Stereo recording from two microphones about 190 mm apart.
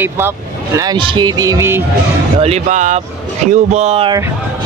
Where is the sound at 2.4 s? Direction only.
35° right (ahead or behind).